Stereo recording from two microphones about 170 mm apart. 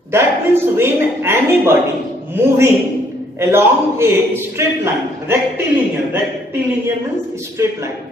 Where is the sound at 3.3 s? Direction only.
15° right (ahead or behind).